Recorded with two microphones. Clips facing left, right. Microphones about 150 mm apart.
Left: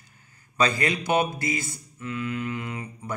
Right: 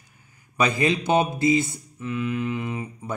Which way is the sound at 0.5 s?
20° right (ahead or behind).